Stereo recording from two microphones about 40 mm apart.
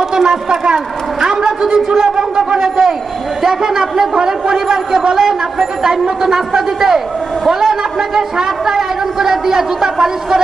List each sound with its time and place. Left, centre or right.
0.1 s a woman's voice: centre
1.2 s a sound: centre
1.9 s speech: centre